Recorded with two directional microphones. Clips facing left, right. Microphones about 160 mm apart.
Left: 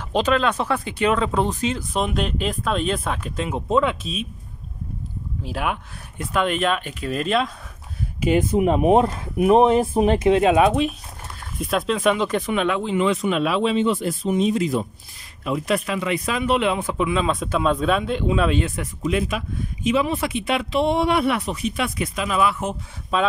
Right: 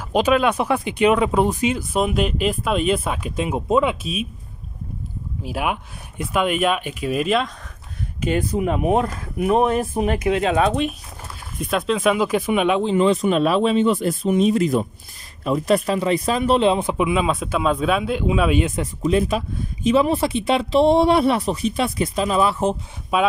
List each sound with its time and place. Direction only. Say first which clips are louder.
0.1 s speech: right 3 dB; 10° right (ahead or behind)
5.4 s speech: right 2 dB; 10° right (ahead or behind)
8.4 s speech: left 4 dB; 20° left (ahead or behind)
11.5 s speech: right 1 dB; centre (ahead or behind); by 12.9 s 20° right (ahead or behind)
12.9 s speech: right 2 dB; 40° right (ahead or behind)
15.4 s speech: right 4 dB; 40° right (ahead or behind); by 18.7 s 10° right (ahead or behind)
18.8 s speech: right 4 dB; 35° right (ahead or behind)
23.1 s speech: right 2 dB; 10° right (ahead or behind)